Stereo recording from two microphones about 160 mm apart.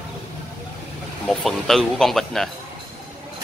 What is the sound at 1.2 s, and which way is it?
Speech, centre (ahead or behind).